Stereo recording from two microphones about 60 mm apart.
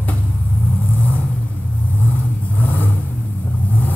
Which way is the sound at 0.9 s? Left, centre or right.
Left.